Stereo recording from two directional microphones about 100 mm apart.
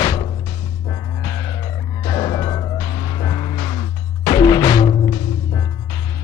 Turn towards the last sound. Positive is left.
turn(degrees=40)  # may be behind; listen again after turning